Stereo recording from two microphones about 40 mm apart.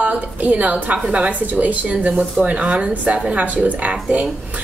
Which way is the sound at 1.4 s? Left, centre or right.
Right.